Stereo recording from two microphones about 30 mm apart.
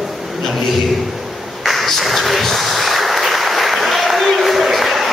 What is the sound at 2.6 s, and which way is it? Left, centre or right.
Applause, centre.